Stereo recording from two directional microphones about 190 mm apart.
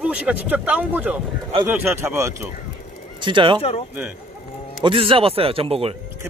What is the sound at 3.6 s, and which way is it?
Speech, 30° left (ahead or behind).